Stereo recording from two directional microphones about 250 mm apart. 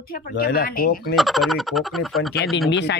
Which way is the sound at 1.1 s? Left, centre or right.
Centre.